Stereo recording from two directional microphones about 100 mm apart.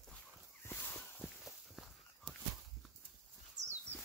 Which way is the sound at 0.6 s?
20° left (ahead or behind).